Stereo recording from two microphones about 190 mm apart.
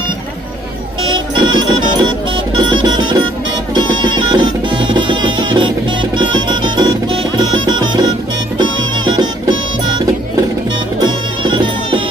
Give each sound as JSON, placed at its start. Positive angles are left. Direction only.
{"t": 1.0, "sound": "music", "side_deg": -25}